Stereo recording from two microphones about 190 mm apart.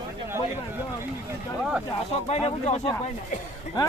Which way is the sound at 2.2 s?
35° left (ahead or behind).